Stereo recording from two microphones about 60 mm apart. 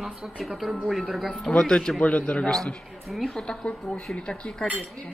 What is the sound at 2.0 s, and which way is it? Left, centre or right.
A woman's voice, left.